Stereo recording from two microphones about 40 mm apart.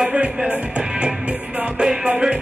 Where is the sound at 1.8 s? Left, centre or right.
Right.